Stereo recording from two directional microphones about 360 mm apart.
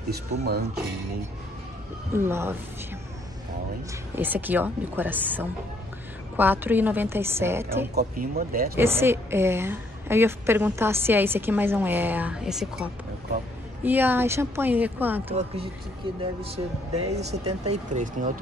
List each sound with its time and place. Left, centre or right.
0.3 s speech: right
2.1 s speech: centre
4.1 s a woman's voice: centre
7.9 s speech: right
8.7 s a woman's voice: centre
15.3 s speech: centre